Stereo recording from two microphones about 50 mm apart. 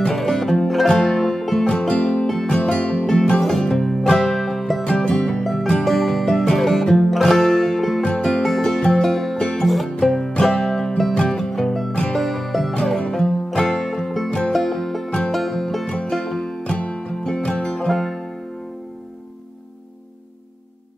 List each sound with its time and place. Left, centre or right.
0.1 s music: centre
1.8 s music: centre
4.8 s music: centre
9.4 s music: centre
11.9 s music: centre
12.2 s music: centre
15.0 s music: centre
15.3 s music: centre
16.7 s music: left
17.7 s music: centre